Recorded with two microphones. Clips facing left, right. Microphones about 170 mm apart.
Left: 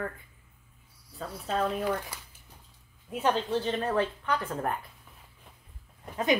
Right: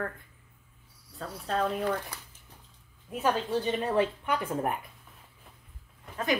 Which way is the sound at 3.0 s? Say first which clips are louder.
Left 1 dB; 5° right (ahead or behind).